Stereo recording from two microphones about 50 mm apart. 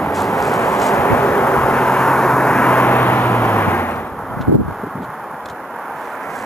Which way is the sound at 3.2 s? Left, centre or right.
Left.